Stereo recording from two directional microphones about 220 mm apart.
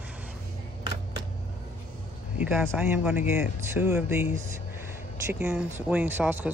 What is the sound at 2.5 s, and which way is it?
Speech, centre (ahead or behind).